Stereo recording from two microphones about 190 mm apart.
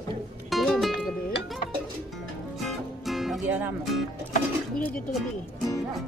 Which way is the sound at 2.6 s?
Centre (ahead or behind).